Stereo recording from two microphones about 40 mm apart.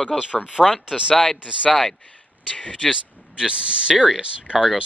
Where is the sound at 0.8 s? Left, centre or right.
Right.